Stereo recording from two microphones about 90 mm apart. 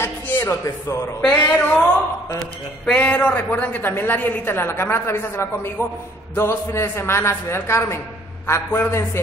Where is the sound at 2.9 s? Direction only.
15° left (ahead or behind).